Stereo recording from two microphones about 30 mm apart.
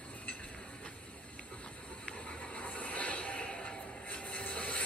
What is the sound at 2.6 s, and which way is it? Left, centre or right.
Music, left.